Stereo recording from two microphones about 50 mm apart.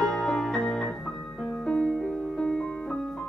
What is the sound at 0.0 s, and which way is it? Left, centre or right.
Music, centre.